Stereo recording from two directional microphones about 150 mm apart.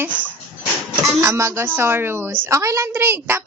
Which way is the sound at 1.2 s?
20° right (ahead or behind).